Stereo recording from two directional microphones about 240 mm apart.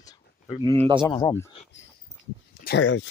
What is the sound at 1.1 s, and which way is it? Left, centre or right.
Speech, centre.